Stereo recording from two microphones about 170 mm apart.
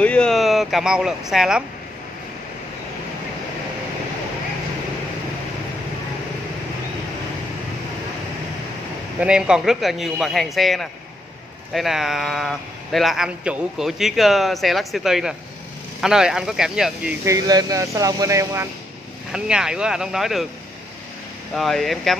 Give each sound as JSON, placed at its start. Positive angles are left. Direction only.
{"t": 0.0, "sound": "speech", "side_deg": 5}
{"t": 9.2, "sound": "a man's voice", "side_deg": -5}
{"t": 17.2, "sound": "speech", "side_deg": -20}
{"t": 19.3, "sound": "a man's voice", "side_deg": -5}
{"t": 21.5, "sound": "a man's voice", "side_deg": 0}